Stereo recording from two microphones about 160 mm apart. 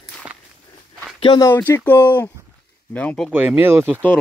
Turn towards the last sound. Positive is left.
turn(degrees=-15)  # may be behind; listen again after turning